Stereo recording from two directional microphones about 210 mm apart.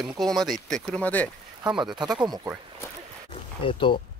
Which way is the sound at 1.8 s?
20° right (ahead or behind).